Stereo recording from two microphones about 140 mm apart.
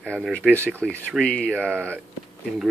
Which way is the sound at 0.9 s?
10° left (ahead or behind).